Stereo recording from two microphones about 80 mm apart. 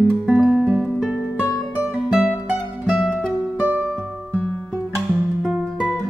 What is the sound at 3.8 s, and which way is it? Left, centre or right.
Music, centre.